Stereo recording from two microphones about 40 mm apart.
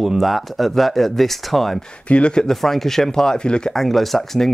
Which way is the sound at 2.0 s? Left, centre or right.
Left.